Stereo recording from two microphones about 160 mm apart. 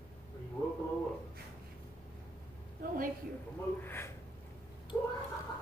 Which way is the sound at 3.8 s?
15° left (ahead or behind).